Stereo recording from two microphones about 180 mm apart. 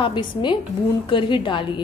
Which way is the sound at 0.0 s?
25° left (ahead or behind).